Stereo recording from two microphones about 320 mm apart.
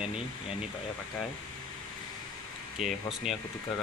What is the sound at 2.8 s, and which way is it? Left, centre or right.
Speech, centre.